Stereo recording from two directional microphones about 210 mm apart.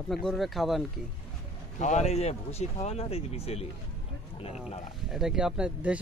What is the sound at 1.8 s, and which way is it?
Speech, 35° left (ahead or behind).